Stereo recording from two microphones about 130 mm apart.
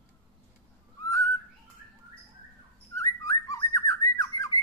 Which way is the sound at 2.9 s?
25° left (ahead or behind).